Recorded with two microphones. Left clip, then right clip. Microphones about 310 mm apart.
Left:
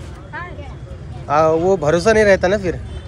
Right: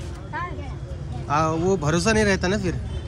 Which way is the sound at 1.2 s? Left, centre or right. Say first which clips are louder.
Left 8 dB; centre.